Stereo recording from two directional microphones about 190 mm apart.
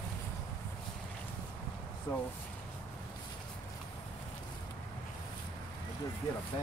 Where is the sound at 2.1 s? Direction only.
20° left (ahead or behind).